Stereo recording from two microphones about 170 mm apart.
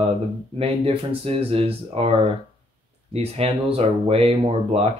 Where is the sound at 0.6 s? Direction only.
35° right (ahead or behind).